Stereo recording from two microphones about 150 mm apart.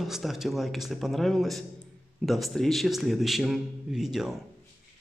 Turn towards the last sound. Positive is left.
turn(degrees=-5)  # may be behind; listen again after turning